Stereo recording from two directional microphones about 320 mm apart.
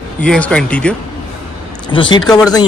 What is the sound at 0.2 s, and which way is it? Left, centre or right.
Speech, centre.